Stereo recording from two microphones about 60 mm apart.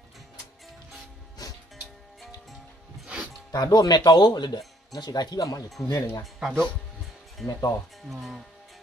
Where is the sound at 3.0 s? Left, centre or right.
Centre.